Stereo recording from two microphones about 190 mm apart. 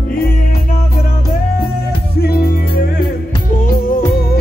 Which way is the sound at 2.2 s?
55° left (ahead or behind).